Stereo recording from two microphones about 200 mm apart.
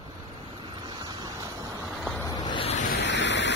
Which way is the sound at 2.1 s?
10° left (ahead or behind).